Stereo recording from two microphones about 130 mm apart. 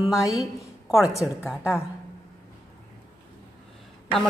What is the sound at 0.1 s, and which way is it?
A woman's voice, 25° left (ahead or behind).